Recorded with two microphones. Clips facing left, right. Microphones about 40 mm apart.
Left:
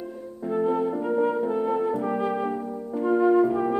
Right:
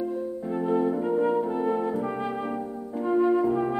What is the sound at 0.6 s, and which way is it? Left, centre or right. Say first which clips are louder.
Music: left 1 dB; centre.